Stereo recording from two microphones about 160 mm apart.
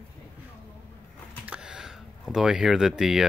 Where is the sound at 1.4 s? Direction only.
5° right (ahead or behind).